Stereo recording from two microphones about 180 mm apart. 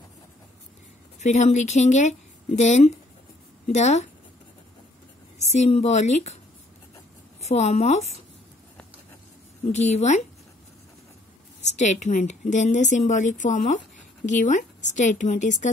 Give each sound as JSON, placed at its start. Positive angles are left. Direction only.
{"t": 1.2, "sound": "a woman's voice", "side_deg": 40}
{"t": 5.5, "sound": "a woman's voice", "side_deg": 35}
{"t": 7.4, "sound": "a woman's voice", "side_deg": 35}
{"t": 9.7, "sound": "a woman's voice", "side_deg": 40}
{"t": 11.6, "sound": "a woman's voice", "side_deg": 40}